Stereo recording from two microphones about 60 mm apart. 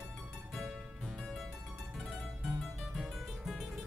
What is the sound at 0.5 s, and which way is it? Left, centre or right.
Music, centre.